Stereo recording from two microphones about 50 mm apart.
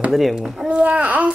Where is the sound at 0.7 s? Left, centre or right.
Right.